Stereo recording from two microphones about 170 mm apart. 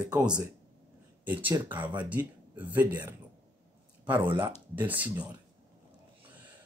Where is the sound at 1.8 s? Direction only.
30° right (ahead or behind).